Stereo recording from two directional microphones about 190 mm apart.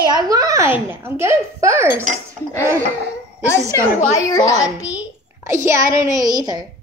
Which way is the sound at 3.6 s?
15° right (ahead or behind).